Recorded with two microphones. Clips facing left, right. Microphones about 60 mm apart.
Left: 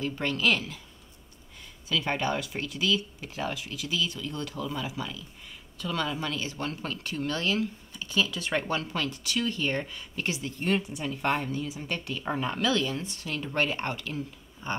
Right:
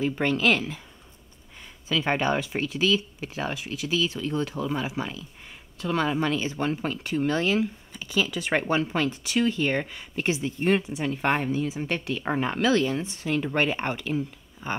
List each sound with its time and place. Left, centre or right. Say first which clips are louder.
0.0 s speech: right 4 dB; right
1.9 s speech: right 4 dB; right
11.1 s speech: right 4 dB; right
12.1 s speech: right 3 dB; right